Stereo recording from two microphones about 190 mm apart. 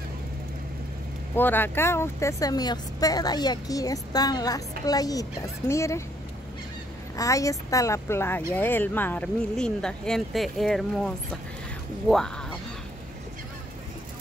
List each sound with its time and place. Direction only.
1.3 s speech: 10° left (ahead or behind)
7.2 s speech: 15° left (ahead or behind)